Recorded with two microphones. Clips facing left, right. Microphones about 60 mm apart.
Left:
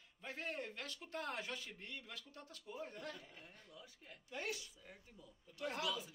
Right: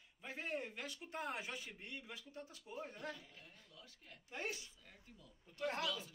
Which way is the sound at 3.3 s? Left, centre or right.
Centre.